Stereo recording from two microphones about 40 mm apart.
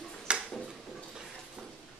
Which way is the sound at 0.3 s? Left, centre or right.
Right.